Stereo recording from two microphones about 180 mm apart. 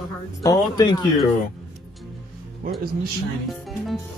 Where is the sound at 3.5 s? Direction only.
Centre (ahead or behind).